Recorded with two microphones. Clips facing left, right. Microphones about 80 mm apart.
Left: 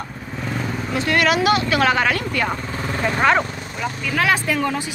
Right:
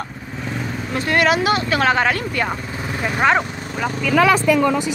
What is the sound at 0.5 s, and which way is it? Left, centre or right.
Vehicle, centre.